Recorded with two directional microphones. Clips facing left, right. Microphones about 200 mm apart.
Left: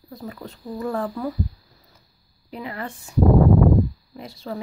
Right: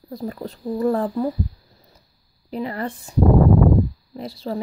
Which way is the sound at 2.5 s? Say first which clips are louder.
Right 6 dB; 35° right (ahead or behind).